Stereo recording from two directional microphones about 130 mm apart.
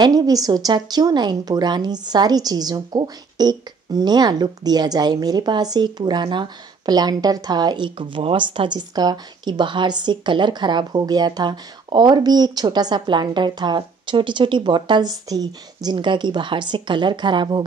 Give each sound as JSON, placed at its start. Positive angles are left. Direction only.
{"t": 0.0, "sound": "a woman's voice", "side_deg": -30}